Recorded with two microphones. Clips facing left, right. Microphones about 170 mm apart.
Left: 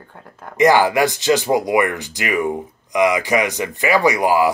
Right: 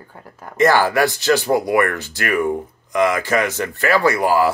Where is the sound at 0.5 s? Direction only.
15° left (ahead or behind).